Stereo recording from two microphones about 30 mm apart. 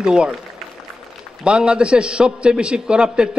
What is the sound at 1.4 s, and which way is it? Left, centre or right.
A man's voice, right.